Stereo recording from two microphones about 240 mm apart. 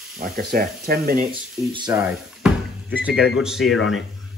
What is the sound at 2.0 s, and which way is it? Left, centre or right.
Speech, centre.